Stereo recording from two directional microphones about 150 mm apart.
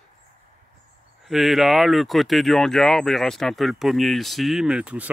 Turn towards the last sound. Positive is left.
turn(degrees=-10)  # may be behind; listen again after turning